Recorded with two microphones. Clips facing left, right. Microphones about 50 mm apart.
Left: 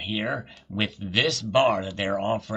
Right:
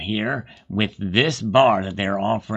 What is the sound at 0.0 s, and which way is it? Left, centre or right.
Speech, centre.